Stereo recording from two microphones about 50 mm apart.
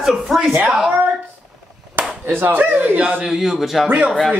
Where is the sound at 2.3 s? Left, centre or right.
Right.